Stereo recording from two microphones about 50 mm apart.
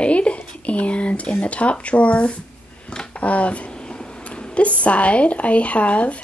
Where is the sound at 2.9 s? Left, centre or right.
Left.